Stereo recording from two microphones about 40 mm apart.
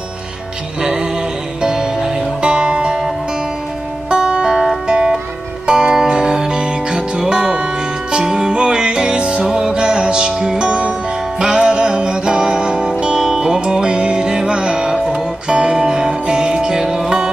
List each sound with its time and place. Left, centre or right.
0.7 s music: centre
4.1 s music: right
5.7 s music: centre